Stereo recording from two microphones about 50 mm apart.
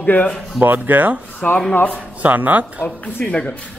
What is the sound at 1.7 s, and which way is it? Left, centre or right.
Speech, left.